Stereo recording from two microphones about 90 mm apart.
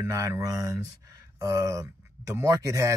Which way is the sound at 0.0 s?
35° right (ahead or behind).